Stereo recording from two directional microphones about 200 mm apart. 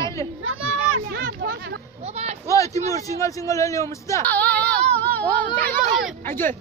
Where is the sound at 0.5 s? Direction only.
90° right.